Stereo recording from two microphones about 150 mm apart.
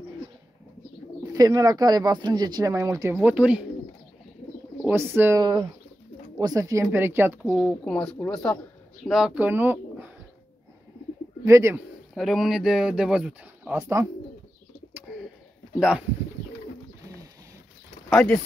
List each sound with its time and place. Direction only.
1.2 s speech: 25° right (ahead or behind); by 3.6 s 10° right (ahead or behind)
4.8 s speech: 15° right (ahead or behind)
5.4 s speech: 30° right (ahead or behind)
7.4 s speech: 5° left (ahead or behind); by 10.1 s 10° right (ahead or behind)
11.4 s speech: 20° right (ahead or behind)
12.1 s speech: centre (ahead or behind)
13.7 s speech: 20° right (ahead or behind)
18.1 s speech: 5° left (ahead or behind)